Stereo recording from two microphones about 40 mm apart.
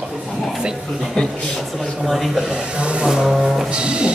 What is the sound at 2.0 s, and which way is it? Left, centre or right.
Speech, centre.